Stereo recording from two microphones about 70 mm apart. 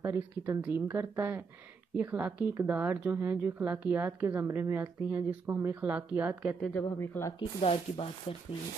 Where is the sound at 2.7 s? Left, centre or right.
Right.